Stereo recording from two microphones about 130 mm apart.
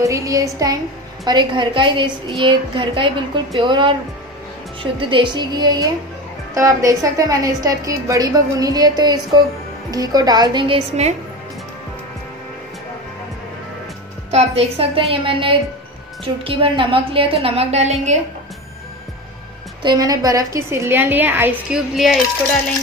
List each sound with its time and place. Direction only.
0.0 s a woman's voice: 25° right (ahead or behind)
4.9 s a woman's voice: 40° right (ahead or behind)
11.0 s speech: 60° right (ahead or behind)
14.3 s a woman's voice: 55° right (ahead or behind)
19.8 s a woman's voice: 30° right (ahead or behind); by 21.8 s 15° right (ahead or behind)
21.9 s coin: centre (ahead or behind)